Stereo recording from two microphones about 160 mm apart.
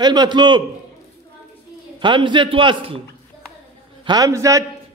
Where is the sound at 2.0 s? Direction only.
30° right (ahead or behind).